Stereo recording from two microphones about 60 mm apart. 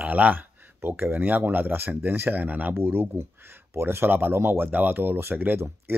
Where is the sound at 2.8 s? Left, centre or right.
Right.